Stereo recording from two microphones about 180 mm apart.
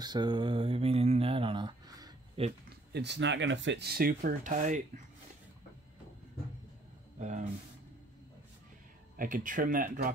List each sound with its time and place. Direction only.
0.0 s speech: 25° right (ahead or behind)
2.4 s speech: 35° right (ahead or behind)
2.9 s speech: 70° right (ahead or behind); by 5.0 s 45° right (ahead or behind)
7.2 s speech: 40° right (ahead or behind)
9.1 s speech: 50° right (ahead or behind)